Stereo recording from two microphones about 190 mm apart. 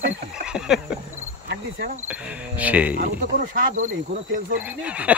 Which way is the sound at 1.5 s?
55° right (ahead or behind).